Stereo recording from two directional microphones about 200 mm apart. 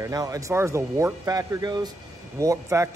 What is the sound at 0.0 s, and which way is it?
Speech, 15° right (ahead or behind).